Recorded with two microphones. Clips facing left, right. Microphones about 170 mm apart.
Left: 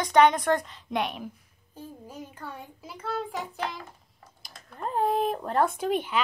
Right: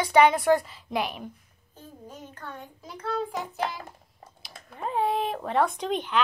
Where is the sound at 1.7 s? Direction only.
10° left (ahead or behind).